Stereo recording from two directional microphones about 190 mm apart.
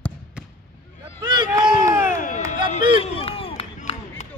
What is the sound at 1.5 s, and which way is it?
Run, 10° right (ahead or behind).